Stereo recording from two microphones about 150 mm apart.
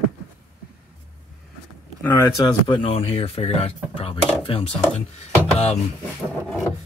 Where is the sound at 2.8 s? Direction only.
40° left (ahead or behind).